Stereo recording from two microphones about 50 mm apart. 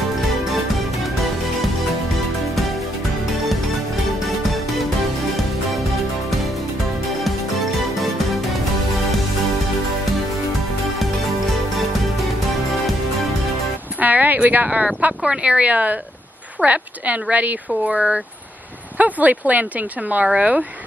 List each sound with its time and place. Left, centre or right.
13.9 s speech: right